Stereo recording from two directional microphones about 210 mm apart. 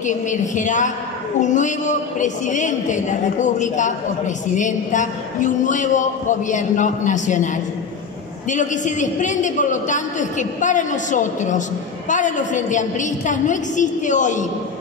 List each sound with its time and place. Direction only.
0.0 s a woman's voice: 35° left (ahead or behind)